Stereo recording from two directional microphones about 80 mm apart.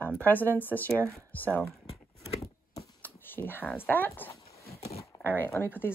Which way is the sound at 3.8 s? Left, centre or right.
Left.